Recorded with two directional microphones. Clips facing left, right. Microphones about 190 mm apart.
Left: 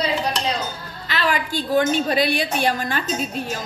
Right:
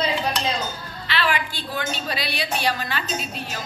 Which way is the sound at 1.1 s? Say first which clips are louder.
Left 2 dB; 40° left (ahead or behind).